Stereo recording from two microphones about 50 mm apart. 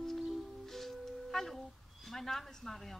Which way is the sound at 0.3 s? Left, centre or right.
Centre.